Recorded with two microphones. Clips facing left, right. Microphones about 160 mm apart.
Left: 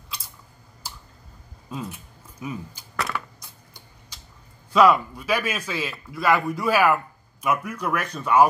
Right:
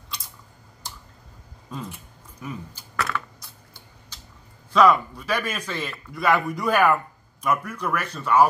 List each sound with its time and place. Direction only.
1.7 s speech: 10° left (ahead or behind)
3.1 s a sound: 15° left (ahead or behind)
4.7 s speech: 10° left (ahead or behind)